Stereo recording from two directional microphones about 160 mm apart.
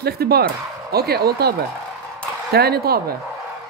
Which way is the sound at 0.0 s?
80° right.